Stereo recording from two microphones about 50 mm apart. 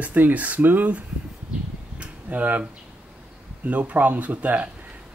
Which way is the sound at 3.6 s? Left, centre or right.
Right.